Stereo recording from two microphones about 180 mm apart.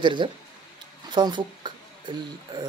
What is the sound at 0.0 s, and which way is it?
Speech, 25° right (ahead or behind).